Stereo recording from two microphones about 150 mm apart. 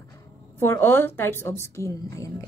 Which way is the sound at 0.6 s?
15° left (ahead or behind).